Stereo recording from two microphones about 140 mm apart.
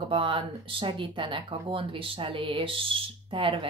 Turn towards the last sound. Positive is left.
turn(degrees=-40)  # may be behind; listen again after turning